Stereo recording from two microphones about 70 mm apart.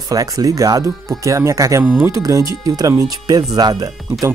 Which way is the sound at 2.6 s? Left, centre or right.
Right.